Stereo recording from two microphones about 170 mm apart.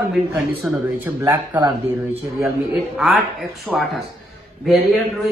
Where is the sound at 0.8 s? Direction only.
15° right (ahead or behind).